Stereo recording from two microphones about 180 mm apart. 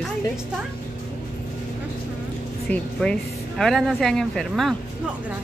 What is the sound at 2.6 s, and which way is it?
A woman's voice, 5° left (ahead or behind).